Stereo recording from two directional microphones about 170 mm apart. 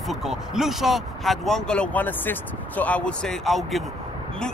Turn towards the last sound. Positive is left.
turn(degrees=0)  # may be behind; listen again after turning